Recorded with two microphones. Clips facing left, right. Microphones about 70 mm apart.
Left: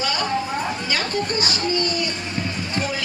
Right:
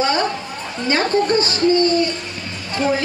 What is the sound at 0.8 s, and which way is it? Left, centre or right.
A woman's voice, right.